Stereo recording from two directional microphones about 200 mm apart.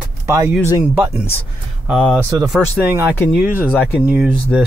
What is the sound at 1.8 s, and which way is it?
Speech, 5° left (ahead or behind).